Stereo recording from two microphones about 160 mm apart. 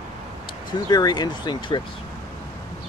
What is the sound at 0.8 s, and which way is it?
Speech, 25° left (ahead or behind).